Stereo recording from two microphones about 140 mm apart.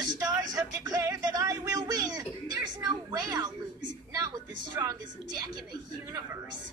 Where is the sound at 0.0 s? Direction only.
30° right (ahead or behind).